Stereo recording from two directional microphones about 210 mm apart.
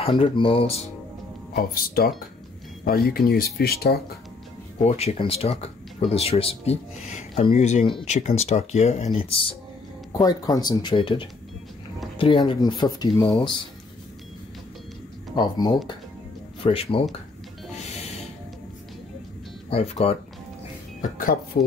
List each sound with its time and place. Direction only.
0.0 s speech: 25° left (ahead or behind)
1.5 s speech: 45° left (ahead or behind)
4.8 s speech: 30° left (ahead or behind)
15.3 s speech: 20° left (ahead or behind)
17.7 s music: 30° left (ahead or behind)
19.7 s speech: 30° left (ahead or behind)
21.5 s speech: 45° left (ahead or behind)